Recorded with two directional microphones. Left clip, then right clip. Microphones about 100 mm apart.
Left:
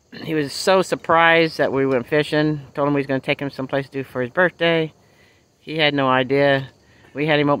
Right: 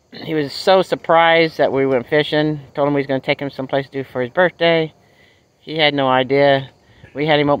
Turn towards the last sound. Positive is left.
turn(degrees=20)  # may be behind; listen again after turning